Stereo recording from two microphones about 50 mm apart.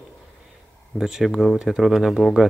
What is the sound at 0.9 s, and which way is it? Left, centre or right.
Speech, centre.